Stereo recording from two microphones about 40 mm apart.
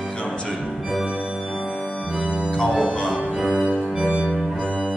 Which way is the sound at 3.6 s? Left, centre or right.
Right.